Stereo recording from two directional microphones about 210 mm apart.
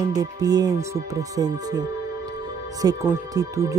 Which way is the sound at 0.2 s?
15° right (ahead or behind).